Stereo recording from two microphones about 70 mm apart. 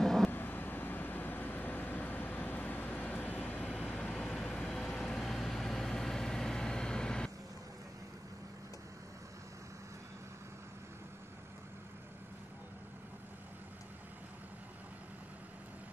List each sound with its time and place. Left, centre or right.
0.0 s vehicle: centre
0.3 s vehicle: left; by 7.2 s centre